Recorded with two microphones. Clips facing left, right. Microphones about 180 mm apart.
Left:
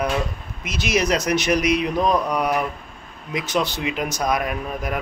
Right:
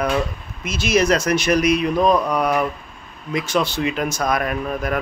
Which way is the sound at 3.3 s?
15° left (ahead or behind).